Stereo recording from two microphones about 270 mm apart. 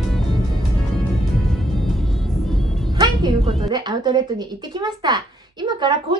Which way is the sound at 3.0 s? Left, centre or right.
Centre.